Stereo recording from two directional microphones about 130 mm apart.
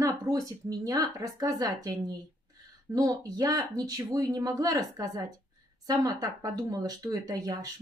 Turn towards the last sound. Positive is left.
turn(degrees=-30)  # may be behind; listen again after turning